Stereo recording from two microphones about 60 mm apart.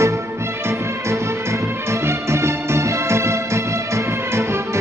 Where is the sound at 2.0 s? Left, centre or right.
Right.